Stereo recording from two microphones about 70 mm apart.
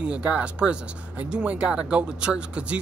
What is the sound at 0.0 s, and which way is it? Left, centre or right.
A man's voice, centre.